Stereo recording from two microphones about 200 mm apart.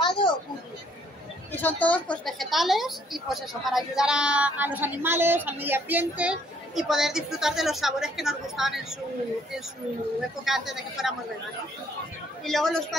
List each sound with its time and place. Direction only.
0.0 s children playing: 25° left (ahead or behind)
1.5 s a woman's voice: 10° left (ahead or behind)
10.4 s a woman's voice: centre (ahead or behind)
12.4 s a woman's voice: centre (ahead or behind)